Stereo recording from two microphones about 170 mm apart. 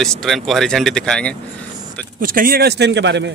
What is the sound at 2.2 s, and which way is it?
Speech, 60° right (ahead or behind).